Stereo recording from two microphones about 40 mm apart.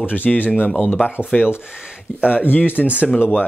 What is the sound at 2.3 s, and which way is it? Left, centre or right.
Speech, left.